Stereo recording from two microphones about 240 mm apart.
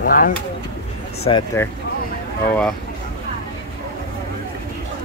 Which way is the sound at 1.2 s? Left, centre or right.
Centre.